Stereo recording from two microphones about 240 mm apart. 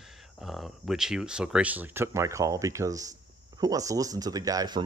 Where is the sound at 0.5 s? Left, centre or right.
Centre.